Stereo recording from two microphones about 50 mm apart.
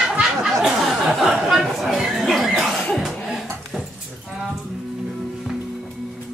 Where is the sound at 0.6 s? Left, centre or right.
Centre.